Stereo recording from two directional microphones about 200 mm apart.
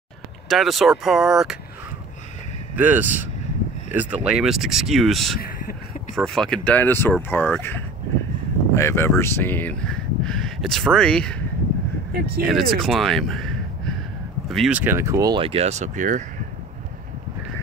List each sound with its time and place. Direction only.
0.5 s speech: centre (ahead or behind)
2.7 s speech: 10° right (ahead or behind)
5.4 s a sound: 45° left (ahead or behind)
6.1 s speech: 5° left (ahead or behind)
12.1 s speech: 50° right (ahead or behind)
12.4 s a man's voice: centre (ahead or behind); by 16.3 s 40° right (ahead or behind)